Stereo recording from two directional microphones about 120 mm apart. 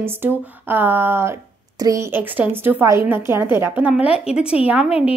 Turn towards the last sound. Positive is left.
turn(degrees=-10)  # may be behind; listen again after turning